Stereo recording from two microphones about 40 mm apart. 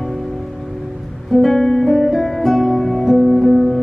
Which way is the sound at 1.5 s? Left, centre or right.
Centre.